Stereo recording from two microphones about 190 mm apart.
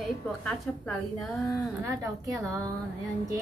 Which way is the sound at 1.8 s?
15° right (ahead or behind).